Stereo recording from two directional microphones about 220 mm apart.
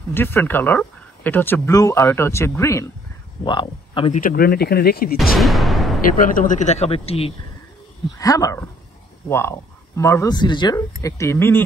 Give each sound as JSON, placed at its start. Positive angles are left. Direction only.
{"t": 0.1, "sound": "a man's voice", "side_deg": 10}
{"t": 4.2, "sound": "speech", "side_deg": 40}
{"t": 5.4, "sound": "a sound", "side_deg": 0}
{"t": 6.1, "sound": "speech", "side_deg": 40}
{"t": 8.2, "sound": "speech", "side_deg": 15}